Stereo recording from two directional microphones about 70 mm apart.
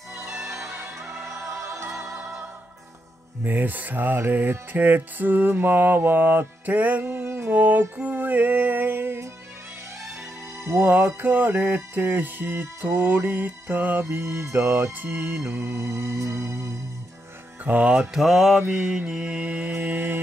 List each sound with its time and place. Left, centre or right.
0.5 s music: right
3.4 s music: right
10.6 s music: right
14.0 s music: right
17.6 s music: right
17.9 s mantra: centre
18.7 s music: centre; by 20.2 s right